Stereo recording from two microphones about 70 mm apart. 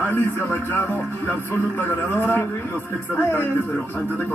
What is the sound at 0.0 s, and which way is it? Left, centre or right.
Speech, left.